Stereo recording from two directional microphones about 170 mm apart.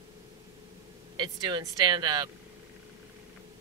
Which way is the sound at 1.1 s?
25° right (ahead or behind).